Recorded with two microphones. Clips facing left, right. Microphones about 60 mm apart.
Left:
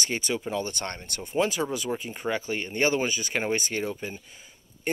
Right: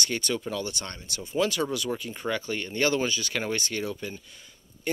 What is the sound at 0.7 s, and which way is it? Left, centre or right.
Speech, left.